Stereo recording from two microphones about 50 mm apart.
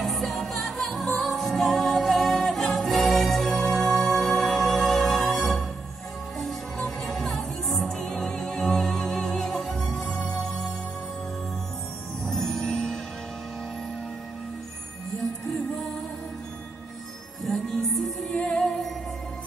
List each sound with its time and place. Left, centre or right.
0.0 s music: centre
7.0 s music: centre
8.0 s music: centre
12.2 s music: centre
17.4 s music: centre
18.3 s music: centre